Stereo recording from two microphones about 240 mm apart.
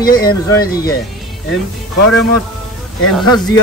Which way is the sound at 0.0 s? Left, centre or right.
Left.